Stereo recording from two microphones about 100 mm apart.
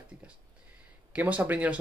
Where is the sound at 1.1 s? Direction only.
15° right (ahead or behind).